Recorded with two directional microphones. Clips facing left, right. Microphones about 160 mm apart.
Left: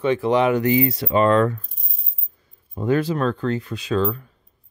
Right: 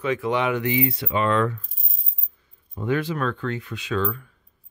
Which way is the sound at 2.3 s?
40° left (ahead or behind).